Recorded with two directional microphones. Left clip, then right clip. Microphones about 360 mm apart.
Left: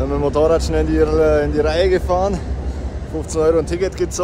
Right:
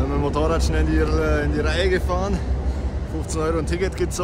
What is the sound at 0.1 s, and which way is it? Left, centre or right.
Speech, centre.